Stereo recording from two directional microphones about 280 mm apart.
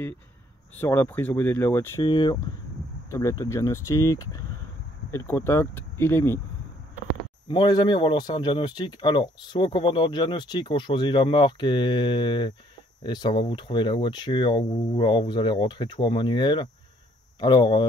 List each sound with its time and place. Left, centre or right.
0.7 s a man's voice: centre
7.4 s a man's voice: centre